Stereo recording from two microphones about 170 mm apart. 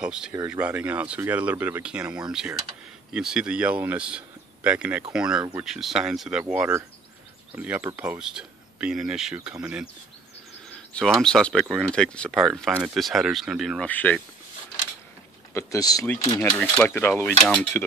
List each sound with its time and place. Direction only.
0.0 s speech: 5° right (ahead or behind)
10.9 s speech: 5° left (ahead or behind)
13.8 s speech: 10° left (ahead or behind)
15.5 s speech: 20° left (ahead or behind)